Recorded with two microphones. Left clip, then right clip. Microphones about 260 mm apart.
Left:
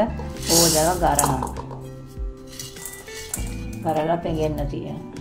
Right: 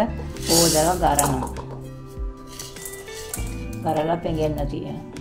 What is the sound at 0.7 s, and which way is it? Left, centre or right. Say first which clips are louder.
Speech: even; right.